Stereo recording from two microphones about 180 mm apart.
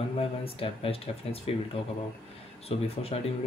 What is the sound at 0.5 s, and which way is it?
Speech, 30° left (ahead or behind).